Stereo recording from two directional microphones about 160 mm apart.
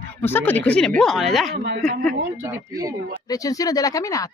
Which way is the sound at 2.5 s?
20° right (ahead or behind).